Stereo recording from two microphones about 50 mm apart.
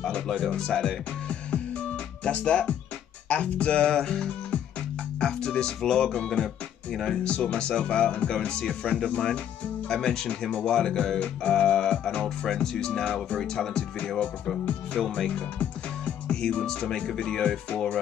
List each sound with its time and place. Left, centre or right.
0.6 s speech: centre
2.2 s speech: left
14.7 s music: centre
16.9 s speech: centre